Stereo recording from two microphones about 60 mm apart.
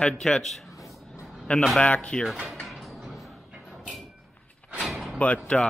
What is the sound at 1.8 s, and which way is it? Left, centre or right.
Speech, centre.